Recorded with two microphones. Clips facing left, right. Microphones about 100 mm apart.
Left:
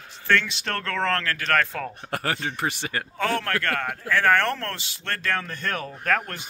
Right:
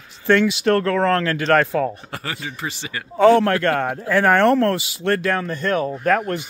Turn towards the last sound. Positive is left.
turn(degrees=-5)  # may be behind; listen again after turning